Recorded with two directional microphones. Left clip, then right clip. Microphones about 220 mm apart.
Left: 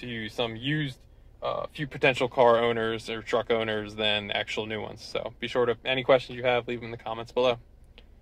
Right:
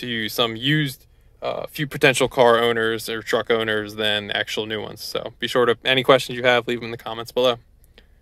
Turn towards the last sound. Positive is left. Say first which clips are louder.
# right 5 dB
turn(degrees=-40)  # may be behind; listen again after turning